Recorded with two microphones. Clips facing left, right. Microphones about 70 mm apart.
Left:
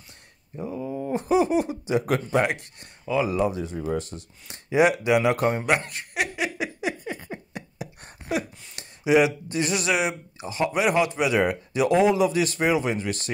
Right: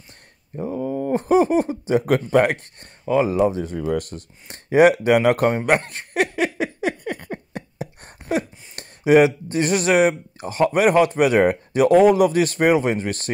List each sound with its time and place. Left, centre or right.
0.7 s a sound: right
1.1 s speech: right
3.7 s speech: right
4.5 s speech: right
5.7 s a sound: right
7.5 s speech: right